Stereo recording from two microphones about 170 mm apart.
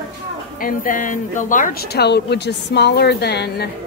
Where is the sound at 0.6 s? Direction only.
55° left (ahead or behind).